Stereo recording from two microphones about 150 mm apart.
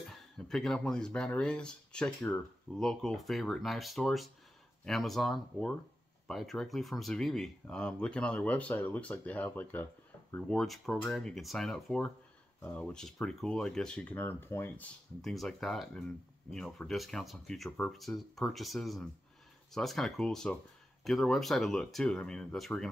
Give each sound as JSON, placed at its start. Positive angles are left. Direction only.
{"t": 0.1, "sound": "speech", "side_deg": 5}
{"t": 15.2, "sound": "speech", "side_deg": 0}